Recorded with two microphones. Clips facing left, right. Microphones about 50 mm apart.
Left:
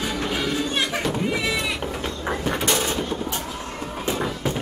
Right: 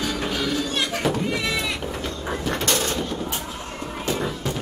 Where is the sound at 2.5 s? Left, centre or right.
Centre.